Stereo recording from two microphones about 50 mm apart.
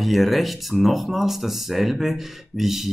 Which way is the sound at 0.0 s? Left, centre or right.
Centre.